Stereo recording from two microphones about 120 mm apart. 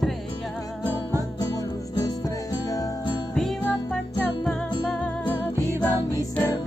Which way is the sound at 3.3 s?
5° left (ahead or behind).